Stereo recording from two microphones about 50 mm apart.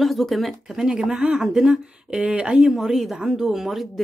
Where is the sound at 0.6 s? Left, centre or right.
Centre.